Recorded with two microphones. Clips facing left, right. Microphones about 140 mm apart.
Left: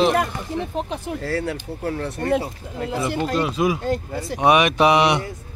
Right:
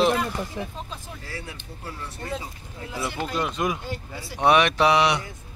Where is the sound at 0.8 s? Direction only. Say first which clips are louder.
Left 11 dB; 70° left (ahead or behind).